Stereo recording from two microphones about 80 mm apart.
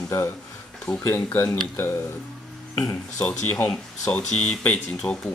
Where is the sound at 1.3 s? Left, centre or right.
Left.